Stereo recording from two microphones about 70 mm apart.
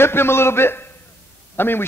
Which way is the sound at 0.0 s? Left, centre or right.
Left.